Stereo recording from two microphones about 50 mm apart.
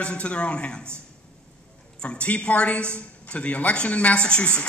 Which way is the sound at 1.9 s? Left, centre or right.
Left.